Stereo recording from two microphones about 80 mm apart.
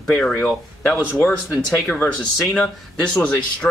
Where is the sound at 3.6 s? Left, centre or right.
Left.